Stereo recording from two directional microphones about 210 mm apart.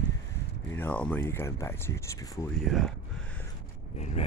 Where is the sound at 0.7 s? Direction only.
5° left (ahead or behind).